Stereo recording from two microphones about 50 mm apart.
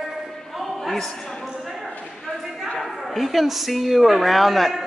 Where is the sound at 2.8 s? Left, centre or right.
Centre.